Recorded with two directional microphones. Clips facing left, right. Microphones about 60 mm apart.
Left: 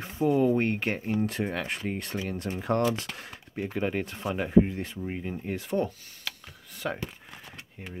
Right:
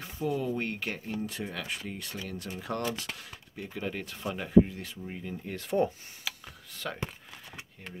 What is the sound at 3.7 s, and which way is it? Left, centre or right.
Speech, left.